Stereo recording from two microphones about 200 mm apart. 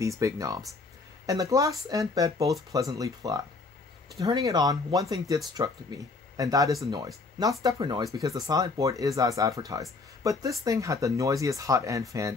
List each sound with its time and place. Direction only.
0.0 s speech: 15° right (ahead or behind)